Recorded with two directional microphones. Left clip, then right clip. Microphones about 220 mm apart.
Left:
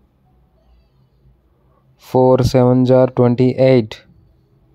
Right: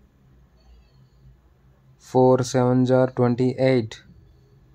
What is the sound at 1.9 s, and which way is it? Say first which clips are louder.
Speech: left 5 dB; 25° left (ahead or behind).